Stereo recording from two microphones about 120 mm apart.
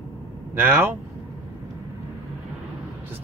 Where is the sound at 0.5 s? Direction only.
15° right (ahead or behind).